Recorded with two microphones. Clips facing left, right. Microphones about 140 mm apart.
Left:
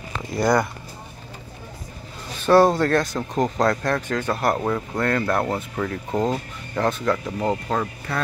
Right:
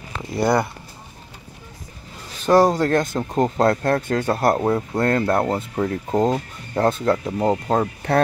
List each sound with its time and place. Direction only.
0.4 s speech: 25° right (ahead or behind)
2.4 s speech: 15° right (ahead or behind); by 7.9 s 30° right (ahead or behind)